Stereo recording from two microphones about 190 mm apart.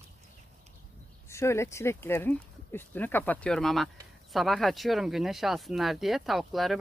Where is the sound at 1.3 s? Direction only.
15° left (ahead or behind).